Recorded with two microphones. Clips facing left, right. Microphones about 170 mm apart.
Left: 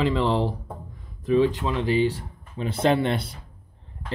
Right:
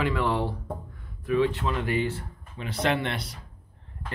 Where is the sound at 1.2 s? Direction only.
20° left (ahead or behind).